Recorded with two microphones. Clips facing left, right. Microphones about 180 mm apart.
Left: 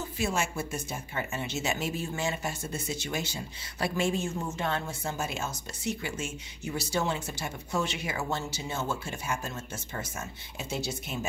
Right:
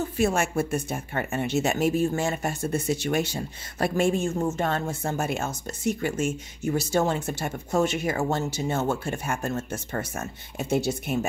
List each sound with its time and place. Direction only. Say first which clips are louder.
0.2 s speech: right 7 dB; 55° right (ahead or behind)